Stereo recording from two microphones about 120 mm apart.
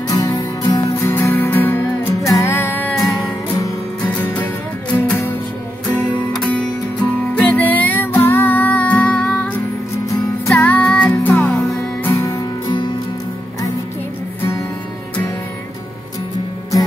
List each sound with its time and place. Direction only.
0.1 s music: 35° left (ahead or behind)
0.8 s music: 20° left (ahead or behind)
4.1 s music: 10° left (ahead or behind)
6.3 s music: 5° left (ahead or behind)
10.0 s music: 25° left (ahead or behind)
10.5 s music: 15° left (ahead or behind); by 12.9 s 40° left (ahead or behind)